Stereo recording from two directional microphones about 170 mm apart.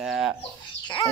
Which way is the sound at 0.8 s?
30° left (ahead or behind).